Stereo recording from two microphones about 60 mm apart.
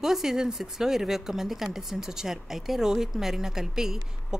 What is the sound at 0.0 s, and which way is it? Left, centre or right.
A woman's voice, centre.